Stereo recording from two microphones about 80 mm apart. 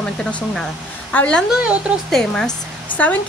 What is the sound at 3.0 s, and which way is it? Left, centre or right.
Speech, centre.